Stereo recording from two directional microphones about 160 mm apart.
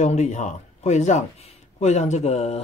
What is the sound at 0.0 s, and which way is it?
Speech, 45° left (ahead or behind).